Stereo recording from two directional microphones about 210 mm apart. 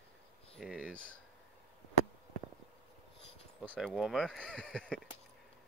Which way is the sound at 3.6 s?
5° left (ahead or behind).